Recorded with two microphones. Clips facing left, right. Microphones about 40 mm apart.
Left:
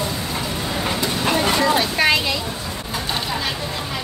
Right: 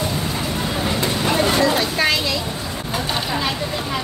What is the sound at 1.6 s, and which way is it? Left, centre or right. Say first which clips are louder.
Vehicle: even; centre.